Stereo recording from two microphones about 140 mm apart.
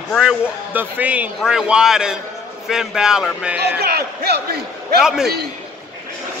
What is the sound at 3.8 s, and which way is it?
Speech, 90° right.